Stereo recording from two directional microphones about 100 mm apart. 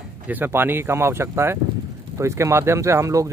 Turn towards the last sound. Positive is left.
turn(degrees=-30)  # may be behind; listen again after turning